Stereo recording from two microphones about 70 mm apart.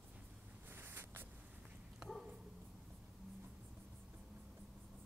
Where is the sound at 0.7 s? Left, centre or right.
Right.